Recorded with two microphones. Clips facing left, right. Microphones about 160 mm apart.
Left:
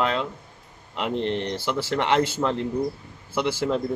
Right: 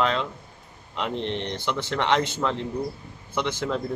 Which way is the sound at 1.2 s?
55° left (ahead or behind).